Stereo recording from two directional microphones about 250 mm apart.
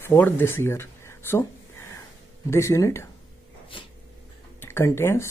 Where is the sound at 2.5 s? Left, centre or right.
Centre.